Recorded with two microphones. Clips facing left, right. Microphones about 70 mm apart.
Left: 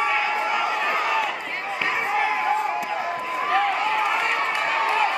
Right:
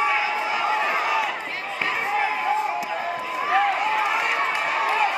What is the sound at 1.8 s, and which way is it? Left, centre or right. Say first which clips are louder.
Run: even; centre.